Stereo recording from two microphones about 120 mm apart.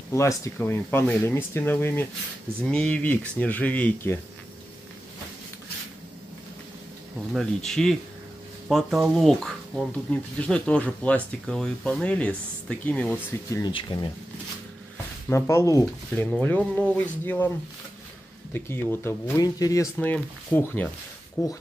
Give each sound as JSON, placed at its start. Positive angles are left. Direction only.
{"t": 0.1, "sound": "speech", "side_deg": 25}
{"t": 0.8, "sound": "speech", "side_deg": 10}
{"t": 1.2, "sound": "speech", "side_deg": 20}
{"t": 7.3, "sound": "speech", "side_deg": 5}
{"t": 10.1, "sound": "speech", "side_deg": 15}
{"t": 13.7, "sound": "speech", "side_deg": 40}
{"t": 15.2, "sound": "speech", "side_deg": 25}
{"t": 16.2, "sound": "speech", "side_deg": 15}
{"t": 18.5, "sound": "speech", "side_deg": 20}
{"t": 20.0, "sound": "speech", "side_deg": 15}